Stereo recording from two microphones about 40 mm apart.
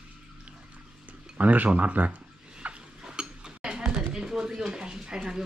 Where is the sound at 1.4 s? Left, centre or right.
Right.